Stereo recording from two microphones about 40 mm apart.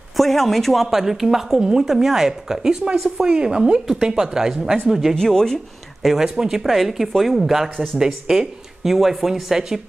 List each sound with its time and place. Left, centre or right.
0.2 s speech: centre
5.1 s speech: centre
6.0 s speech: centre